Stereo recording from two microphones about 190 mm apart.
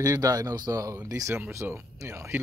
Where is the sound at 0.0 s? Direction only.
15° right (ahead or behind).